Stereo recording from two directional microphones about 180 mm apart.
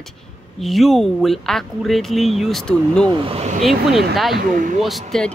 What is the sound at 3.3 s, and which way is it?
Speech, 40° right (ahead or behind).